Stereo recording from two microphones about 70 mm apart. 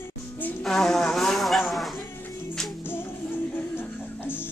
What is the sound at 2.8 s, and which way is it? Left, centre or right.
Music, left.